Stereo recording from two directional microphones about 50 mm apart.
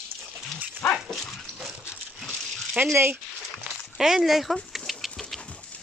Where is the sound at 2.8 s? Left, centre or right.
Right.